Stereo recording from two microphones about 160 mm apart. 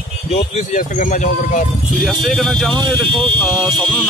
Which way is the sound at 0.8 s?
55° left (ahead or behind).